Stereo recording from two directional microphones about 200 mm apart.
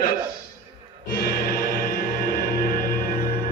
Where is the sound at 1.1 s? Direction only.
50° left (ahead or behind).